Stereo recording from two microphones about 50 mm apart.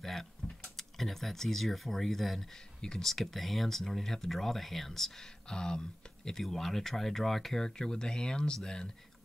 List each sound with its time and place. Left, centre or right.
0.0 s speech: centre
2.8 s speech: centre
3.1 s speech: centre
7.6 s speech: centre